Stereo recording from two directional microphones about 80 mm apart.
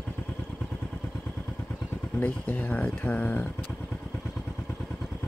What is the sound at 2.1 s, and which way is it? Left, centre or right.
Speech, left.